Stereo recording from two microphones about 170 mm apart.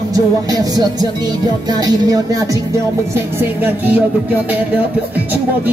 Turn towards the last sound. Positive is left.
turn(degrees=-10)  # may be behind; listen again after turning